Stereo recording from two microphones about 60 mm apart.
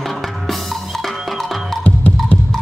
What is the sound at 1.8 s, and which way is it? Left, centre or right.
Music, left.